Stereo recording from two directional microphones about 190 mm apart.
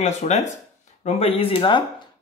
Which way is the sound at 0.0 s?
35° left (ahead or behind).